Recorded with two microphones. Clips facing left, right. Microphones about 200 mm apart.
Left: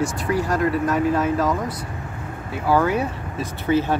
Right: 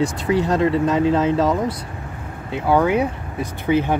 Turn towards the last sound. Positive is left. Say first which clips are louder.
# right 1 dB
turn(degrees=-15)  # may be behind; listen again after turning